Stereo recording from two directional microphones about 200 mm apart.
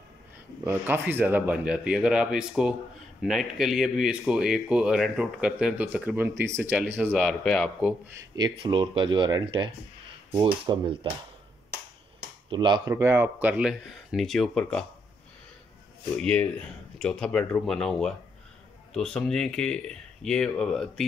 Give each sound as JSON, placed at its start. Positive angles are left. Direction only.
{"t": 0.7, "sound": "speech", "side_deg": -10}
{"t": 8.2, "sound": "speech", "side_deg": -20}
{"t": 12.4, "sound": "speech", "side_deg": -20}
{"t": 12.9, "sound": "speech", "side_deg": -10}
{"t": 16.2, "sound": "speech", "side_deg": 5}